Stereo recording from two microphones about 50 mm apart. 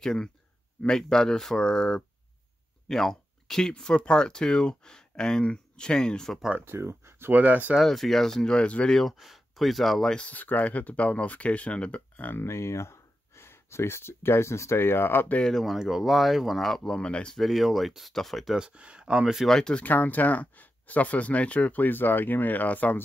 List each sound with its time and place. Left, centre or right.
0.0 s speech: centre
6.6 s speech: right
7.3 s speech: right
7.8 s speech: centre
8.6 s speech: left
9.1 s speech: centre
10.3 s speech: left
12.4 s speech: left
15.6 s speech: centre; by 17.4 s left
17.4 s speech: centre
18.5 s speech: centre
19.4 s speech: centre
19.7 s speech: left